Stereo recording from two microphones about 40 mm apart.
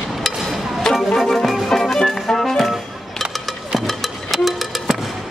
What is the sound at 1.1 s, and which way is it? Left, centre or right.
Music, centre.